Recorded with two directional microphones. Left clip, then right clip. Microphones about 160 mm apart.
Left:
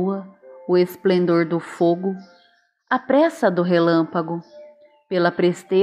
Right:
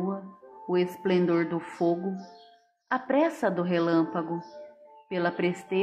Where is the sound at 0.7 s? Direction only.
30° left (ahead or behind).